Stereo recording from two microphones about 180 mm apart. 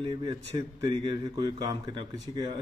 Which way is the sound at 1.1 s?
20° right (ahead or behind).